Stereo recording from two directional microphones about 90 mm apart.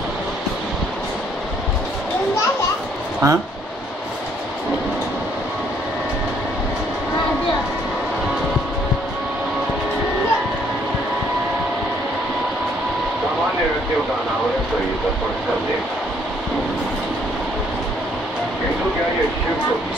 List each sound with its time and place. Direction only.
3.2 s speech: 35° right (ahead or behind)